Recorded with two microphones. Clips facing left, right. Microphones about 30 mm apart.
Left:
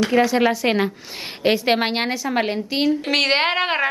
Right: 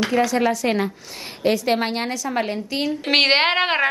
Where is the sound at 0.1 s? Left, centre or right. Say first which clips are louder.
Left 2 dB; centre.